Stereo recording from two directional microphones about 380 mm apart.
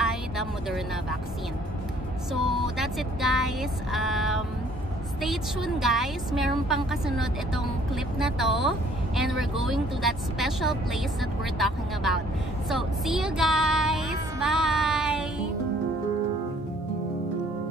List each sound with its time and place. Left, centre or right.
0.0 s vehicle: centre
2.3 s a woman's voice: centre
12.6 s a sound: centre